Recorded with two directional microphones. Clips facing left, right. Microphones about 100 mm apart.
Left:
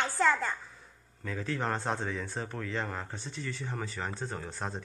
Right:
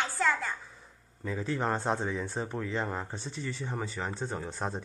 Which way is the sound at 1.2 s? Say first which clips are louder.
Right 2 dB; 15° right (ahead or behind).